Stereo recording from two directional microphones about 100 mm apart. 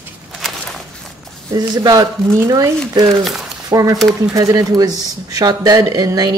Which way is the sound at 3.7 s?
35° right (ahead or behind).